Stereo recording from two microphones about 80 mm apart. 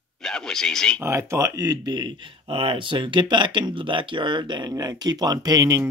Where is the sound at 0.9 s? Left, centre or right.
Right.